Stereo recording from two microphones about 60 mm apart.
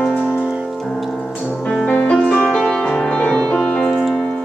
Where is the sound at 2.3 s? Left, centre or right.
Centre.